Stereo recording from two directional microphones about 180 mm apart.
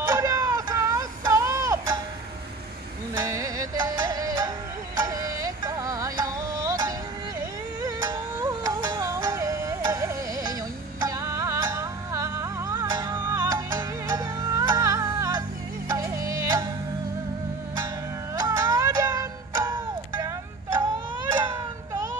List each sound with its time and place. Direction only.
0.0 s a sound: 20° right (ahead or behind)
3.2 s music: 20° right (ahead or behind)
18.3 s music: 20° right (ahead or behind)